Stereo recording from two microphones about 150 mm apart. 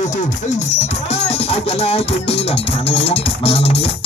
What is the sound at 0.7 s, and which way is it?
Music, 45° left (ahead or behind).